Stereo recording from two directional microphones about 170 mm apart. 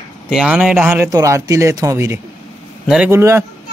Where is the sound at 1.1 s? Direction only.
20° right (ahead or behind).